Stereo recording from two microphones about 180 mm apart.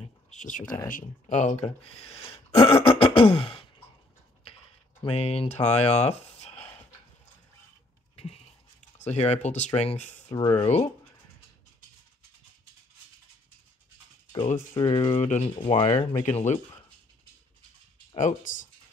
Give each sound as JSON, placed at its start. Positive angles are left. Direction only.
{"t": 0.0, "sound": "a sound", "side_deg": 40}
{"t": 0.8, "sound": "speech", "side_deg": 45}
{"t": 5.0, "sound": "speech", "side_deg": 35}
{"t": 8.9, "sound": "speech", "side_deg": 40}
{"t": 14.7, "sound": "speech", "side_deg": 25}
{"t": 18.1, "sound": "speech", "side_deg": 45}